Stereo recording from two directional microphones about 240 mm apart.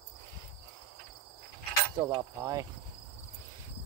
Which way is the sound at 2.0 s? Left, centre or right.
Centre.